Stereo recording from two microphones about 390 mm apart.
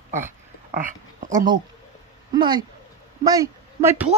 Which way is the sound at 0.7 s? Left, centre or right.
Centre.